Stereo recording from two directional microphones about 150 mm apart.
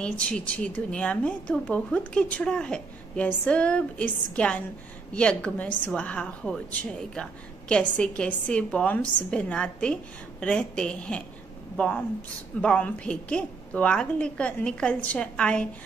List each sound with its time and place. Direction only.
0.0 s a woman's voice: 5° left (ahead or behind)